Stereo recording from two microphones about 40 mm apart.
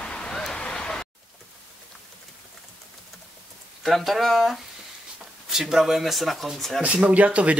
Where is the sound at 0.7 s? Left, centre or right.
Centre.